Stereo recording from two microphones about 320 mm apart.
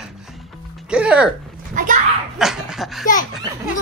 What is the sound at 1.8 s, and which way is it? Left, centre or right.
Speech, right.